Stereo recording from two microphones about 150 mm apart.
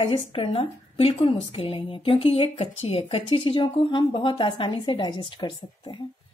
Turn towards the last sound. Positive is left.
turn(degrees=30)  # may be behind; listen again after turning